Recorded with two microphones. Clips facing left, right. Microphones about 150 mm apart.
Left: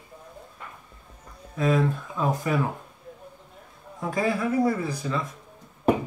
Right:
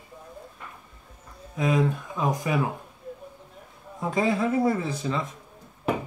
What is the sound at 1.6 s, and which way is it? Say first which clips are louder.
Speech: left 1 dB; 15° right (ahead or behind).